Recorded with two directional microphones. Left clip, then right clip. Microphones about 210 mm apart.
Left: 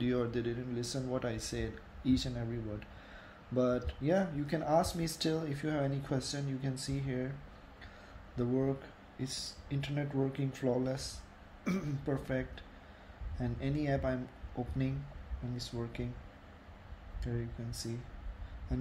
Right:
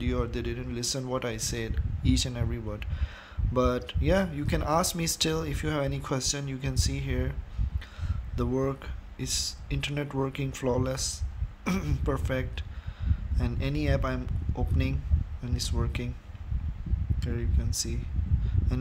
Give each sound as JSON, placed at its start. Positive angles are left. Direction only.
{"t": 0.0, "sound": "speech", "side_deg": -15}
{"t": 8.4, "sound": "speech", "side_deg": -30}
{"t": 17.2, "sound": "speech", "side_deg": -30}